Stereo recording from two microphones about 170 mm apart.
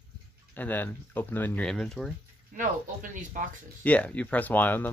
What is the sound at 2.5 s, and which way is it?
Speech, 50° right (ahead or behind).